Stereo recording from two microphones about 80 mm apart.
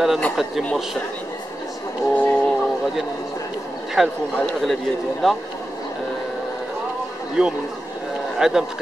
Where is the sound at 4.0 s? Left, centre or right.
Centre.